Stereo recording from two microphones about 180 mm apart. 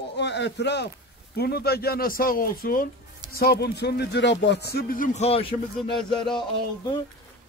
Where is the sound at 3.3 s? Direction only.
65° left (ahead or behind); by 5.9 s 30° left (ahead or behind).